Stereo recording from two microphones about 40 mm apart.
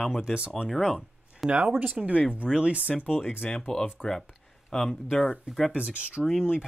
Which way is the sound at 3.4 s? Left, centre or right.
Centre.